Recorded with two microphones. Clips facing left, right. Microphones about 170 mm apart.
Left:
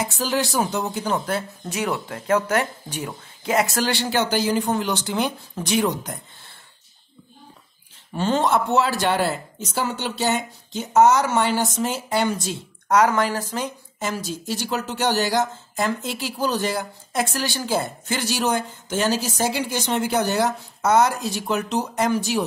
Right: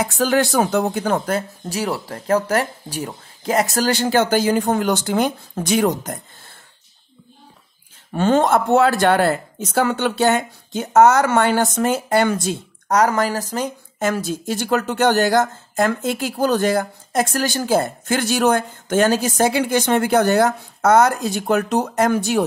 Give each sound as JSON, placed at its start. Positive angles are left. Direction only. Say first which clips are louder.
{"t": 0.0, "sound": "speech", "louder": "right 6 dB", "side_deg": -55}
{"t": 8.1, "sound": "speech", "louder": "right 5 dB", "side_deg": -55}
{"t": 12.8, "sound": "speech", "louder": "right 1 dB", "side_deg": -40}